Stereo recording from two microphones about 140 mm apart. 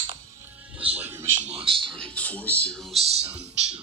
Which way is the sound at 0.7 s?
10° right (ahead or behind).